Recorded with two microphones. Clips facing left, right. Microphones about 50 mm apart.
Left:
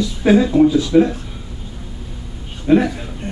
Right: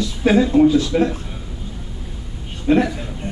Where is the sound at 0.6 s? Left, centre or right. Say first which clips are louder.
Left 2 dB; centre.